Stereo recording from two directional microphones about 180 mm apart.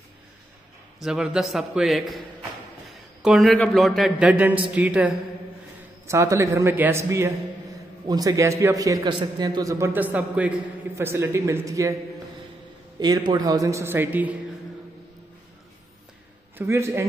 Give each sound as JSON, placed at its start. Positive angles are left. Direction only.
{"t": 0.9, "sound": "a man's voice", "side_deg": -5}
{"t": 13.0, "sound": "a man's voice", "side_deg": -20}
{"t": 16.5, "sound": "a man's voice", "side_deg": -15}